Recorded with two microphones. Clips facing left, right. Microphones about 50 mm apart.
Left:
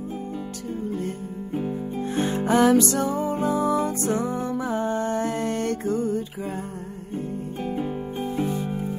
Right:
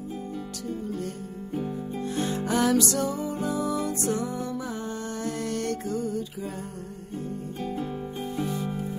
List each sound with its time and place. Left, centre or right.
0.9 s music: left
7.6 s music: left